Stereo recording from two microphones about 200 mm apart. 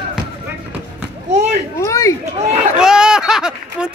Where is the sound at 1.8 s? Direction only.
15° left (ahead or behind).